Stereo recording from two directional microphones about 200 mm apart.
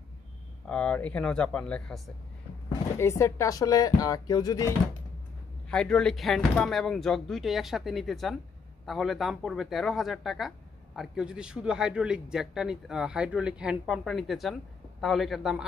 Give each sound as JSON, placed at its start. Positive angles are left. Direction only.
{"t": 0.7, "sound": "a man's voice", "side_deg": 5}
{"t": 3.0, "sound": "speech", "side_deg": 15}
{"t": 5.7, "sound": "a man's voice", "side_deg": 5}